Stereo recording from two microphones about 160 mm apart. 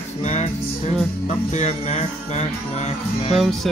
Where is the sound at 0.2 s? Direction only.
45° left (ahead or behind).